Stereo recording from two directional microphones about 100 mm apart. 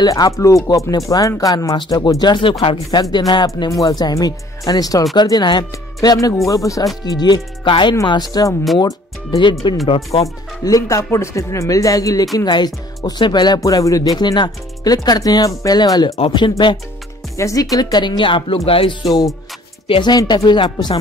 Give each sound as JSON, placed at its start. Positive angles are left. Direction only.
{"t": 0.0, "sound": "speech", "side_deg": 40}
{"t": 9.8, "sound": "speech", "side_deg": 80}
{"t": 10.2, "sound": "speech", "side_deg": 35}
{"t": 13.7, "sound": "speech", "side_deg": 35}
{"t": 17.4, "sound": "speech", "side_deg": 35}
{"t": 19.9, "sound": "speech", "side_deg": 45}